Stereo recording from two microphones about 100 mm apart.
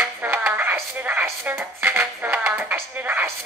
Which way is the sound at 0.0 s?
20° right (ahead or behind).